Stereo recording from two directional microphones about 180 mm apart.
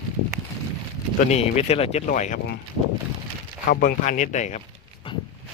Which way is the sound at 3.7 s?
50° left (ahead or behind).